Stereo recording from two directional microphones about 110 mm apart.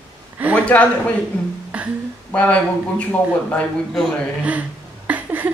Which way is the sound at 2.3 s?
15° left (ahead or behind).